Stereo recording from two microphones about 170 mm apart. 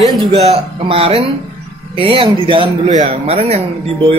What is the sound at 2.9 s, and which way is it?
Speech, 40° right (ahead or behind).